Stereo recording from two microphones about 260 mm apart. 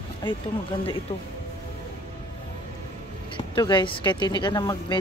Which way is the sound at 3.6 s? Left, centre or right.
Centre.